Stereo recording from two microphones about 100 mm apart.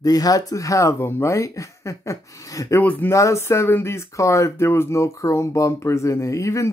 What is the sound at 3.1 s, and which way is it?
Speech, 30° left (ahead or behind).